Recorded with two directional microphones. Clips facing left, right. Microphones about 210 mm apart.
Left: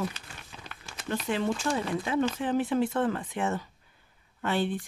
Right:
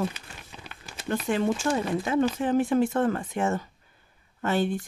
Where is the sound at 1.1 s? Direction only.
45° right (ahead or behind).